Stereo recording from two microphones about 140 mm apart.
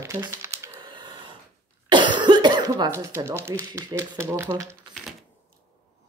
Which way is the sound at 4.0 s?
20° right (ahead or behind).